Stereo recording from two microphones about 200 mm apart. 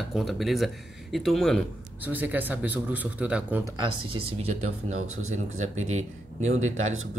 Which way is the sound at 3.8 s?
25° right (ahead or behind).